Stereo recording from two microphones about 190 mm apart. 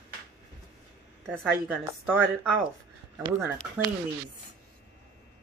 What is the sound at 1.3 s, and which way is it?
Speech, centre (ahead or behind).